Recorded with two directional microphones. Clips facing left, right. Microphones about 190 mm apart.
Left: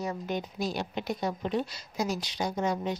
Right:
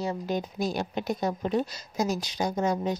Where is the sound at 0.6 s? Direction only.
45° right (ahead or behind).